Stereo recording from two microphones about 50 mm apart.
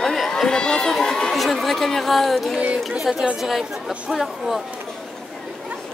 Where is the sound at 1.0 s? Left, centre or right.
Centre.